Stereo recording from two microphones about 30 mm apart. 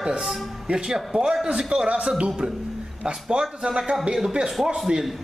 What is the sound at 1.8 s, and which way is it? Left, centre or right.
Speech, right.